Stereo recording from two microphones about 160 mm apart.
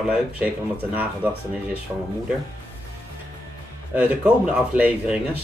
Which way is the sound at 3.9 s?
10° right (ahead or behind).